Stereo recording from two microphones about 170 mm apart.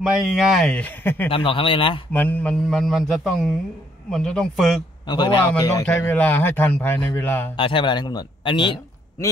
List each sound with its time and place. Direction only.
0.0 s a man's voice: centre (ahead or behind)
1.3 s a man's voice: 30° left (ahead or behind)
2.1 s a man's voice: 10° left (ahead or behind)
5.0 s a man's voice: 25° left (ahead or behind)
5.9 s a man's voice: 10° left (ahead or behind)
7.5 s a man's voice: 30° left (ahead or behind)